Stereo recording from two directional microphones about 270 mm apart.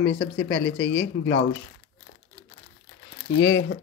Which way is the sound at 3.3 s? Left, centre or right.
Left.